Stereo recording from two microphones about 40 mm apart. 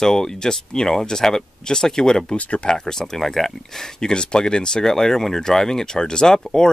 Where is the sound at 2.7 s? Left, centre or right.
Centre.